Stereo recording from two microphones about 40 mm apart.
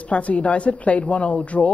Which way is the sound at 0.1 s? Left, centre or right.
Left.